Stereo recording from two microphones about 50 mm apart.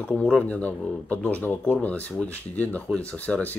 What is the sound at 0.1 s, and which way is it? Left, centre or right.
Speech, left.